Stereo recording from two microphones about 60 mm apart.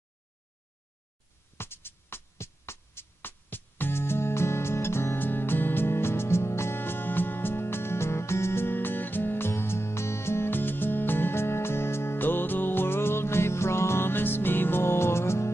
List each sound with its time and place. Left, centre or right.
1.6 s music: left